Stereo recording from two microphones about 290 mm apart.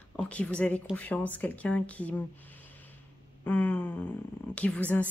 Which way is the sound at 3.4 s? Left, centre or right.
Centre.